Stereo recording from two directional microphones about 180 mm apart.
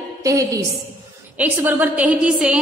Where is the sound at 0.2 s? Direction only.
20° right (ahead or behind).